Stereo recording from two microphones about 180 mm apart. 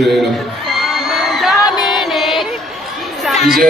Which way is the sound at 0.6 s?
Centre (ahead or behind).